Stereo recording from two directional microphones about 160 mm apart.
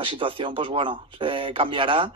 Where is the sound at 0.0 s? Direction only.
30° right (ahead or behind).